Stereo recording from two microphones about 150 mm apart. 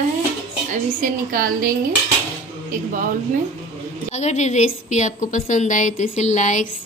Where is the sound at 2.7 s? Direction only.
60° right (ahead or behind).